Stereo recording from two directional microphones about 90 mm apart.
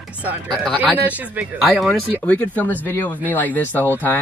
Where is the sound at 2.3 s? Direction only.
20° left (ahead or behind).